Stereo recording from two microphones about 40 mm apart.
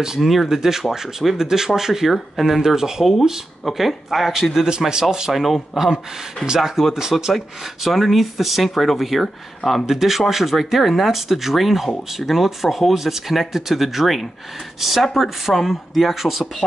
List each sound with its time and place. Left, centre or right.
0.2 s speech: centre
5.3 s speech: centre
6.4 s speech: centre
7.3 s speech: centre